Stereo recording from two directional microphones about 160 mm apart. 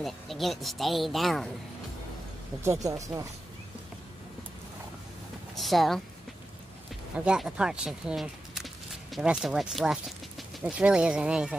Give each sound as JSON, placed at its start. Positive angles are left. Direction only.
{"t": 0.0, "sound": "speech", "side_deg": 0}
{"t": 2.6, "sound": "speech", "side_deg": -20}
{"t": 5.6, "sound": "speech", "side_deg": 0}
{"t": 7.2, "sound": "speech", "side_deg": -5}